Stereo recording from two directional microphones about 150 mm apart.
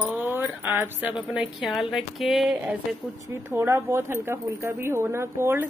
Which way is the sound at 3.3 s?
15° right (ahead or behind).